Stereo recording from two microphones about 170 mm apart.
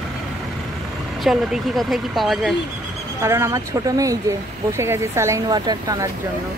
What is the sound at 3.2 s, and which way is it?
Speech, 15° right (ahead or behind).